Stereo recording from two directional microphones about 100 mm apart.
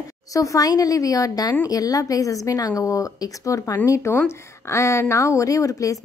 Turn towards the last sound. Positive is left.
turn(degrees=35)  # may be behind; listen again after turning